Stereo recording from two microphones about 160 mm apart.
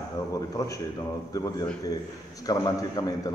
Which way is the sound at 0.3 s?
20° left (ahead or behind).